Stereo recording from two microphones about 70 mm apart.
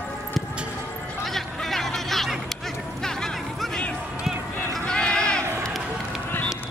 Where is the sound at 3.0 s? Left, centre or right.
Centre.